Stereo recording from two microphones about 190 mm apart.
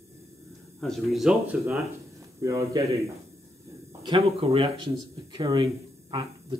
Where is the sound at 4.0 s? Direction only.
25° right (ahead or behind).